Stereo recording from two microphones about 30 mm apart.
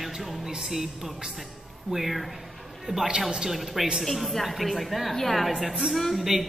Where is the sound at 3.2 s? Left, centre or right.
Centre.